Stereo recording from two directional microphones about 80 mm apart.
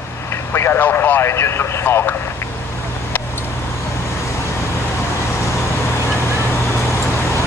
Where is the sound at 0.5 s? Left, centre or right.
Left.